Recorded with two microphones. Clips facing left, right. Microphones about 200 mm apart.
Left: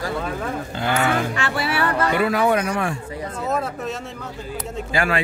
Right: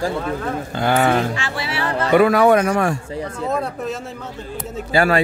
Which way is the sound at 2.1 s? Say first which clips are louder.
Right 9 dB; 55° right (ahead or behind).